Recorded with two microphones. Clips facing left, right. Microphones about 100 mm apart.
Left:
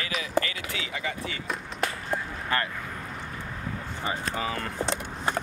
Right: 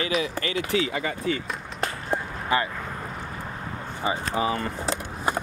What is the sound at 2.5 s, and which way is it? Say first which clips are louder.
Speech: right 4 dB; 10° right (ahead or behind).